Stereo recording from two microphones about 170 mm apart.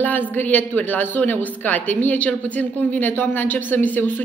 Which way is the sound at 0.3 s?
10° left (ahead or behind).